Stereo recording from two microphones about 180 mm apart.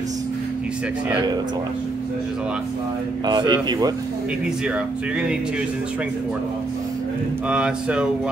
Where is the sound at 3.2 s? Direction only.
25° right (ahead or behind).